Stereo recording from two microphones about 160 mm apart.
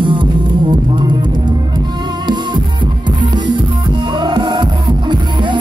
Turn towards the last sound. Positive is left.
turn(degrees=-25)  # may be behind; listen again after turning